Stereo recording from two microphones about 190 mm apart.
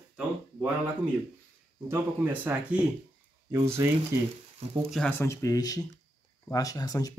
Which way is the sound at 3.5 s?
15° right (ahead or behind).